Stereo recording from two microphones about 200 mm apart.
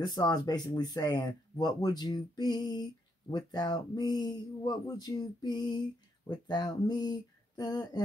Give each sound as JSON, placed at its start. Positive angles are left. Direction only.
{"t": 0.0, "sound": "speech", "side_deg": 20}